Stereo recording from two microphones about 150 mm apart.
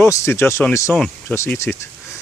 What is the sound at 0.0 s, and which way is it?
Speech, 20° left (ahead or behind).